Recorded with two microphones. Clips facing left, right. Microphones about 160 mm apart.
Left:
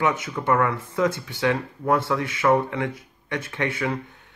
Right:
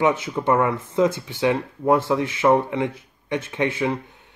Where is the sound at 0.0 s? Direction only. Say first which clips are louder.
Right 4 dB; 25° right (ahead or behind).